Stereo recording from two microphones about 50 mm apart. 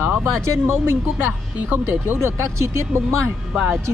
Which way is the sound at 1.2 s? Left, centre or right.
Right.